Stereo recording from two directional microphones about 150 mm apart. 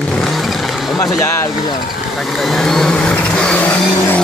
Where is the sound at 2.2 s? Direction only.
Centre (ahead or behind).